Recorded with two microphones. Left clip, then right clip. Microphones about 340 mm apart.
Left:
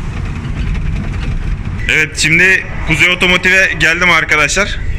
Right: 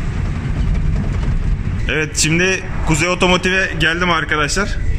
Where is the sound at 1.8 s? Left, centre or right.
Centre.